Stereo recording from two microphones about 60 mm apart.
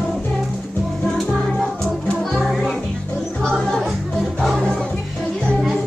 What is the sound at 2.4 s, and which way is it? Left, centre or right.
Music, centre.